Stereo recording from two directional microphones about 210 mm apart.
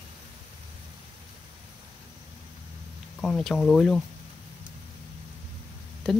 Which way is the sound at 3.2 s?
Centre (ahead or behind).